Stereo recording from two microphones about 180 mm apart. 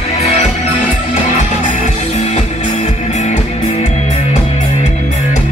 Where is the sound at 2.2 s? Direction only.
40° left (ahead or behind).